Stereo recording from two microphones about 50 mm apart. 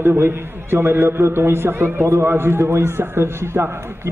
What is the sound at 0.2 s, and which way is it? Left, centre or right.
A man's voice, right.